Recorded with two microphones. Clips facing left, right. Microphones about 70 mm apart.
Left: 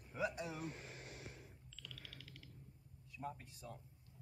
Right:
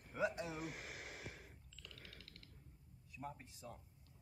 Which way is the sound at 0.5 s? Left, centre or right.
Right.